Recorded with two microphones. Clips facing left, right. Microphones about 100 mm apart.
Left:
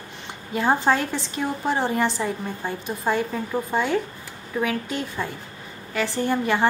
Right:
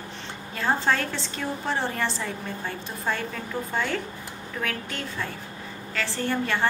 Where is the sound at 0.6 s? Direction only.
15° left (ahead or behind).